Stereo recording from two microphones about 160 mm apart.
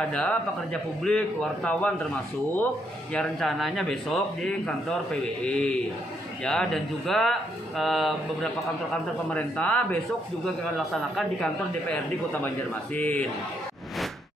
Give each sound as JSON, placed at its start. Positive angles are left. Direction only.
{"t": 0.1, "sound": "a man's voice", "side_deg": 5}
{"t": 3.1, "sound": "a man's voice", "side_deg": 5}
{"t": 12.9, "sound": "a man's voice", "side_deg": 10}